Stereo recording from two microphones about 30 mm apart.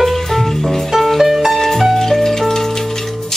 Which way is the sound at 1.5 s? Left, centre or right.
Centre.